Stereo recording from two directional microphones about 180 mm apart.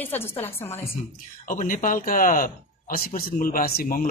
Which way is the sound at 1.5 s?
45° left (ahead or behind).